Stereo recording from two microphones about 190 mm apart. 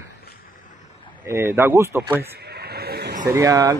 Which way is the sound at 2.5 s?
55° right (ahead or behind).